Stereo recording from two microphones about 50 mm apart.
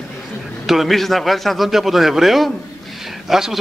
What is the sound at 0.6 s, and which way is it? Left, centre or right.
A man's voice, centre.